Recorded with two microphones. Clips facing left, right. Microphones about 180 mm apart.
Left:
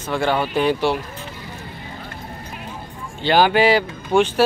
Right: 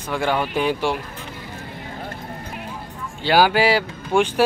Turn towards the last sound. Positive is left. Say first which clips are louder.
# left 2 dB
turn(degrees=-10)  # may be behind; listen again after turning